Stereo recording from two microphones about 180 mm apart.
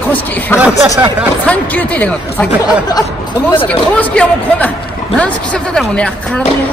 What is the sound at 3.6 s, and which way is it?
Speech, 10° left (ahead or behind).